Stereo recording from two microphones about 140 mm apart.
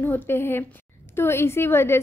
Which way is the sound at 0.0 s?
15° left (ahead or behind).